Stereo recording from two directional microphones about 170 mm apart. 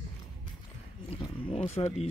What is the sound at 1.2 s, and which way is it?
Speech, 35° left (ahead or behind).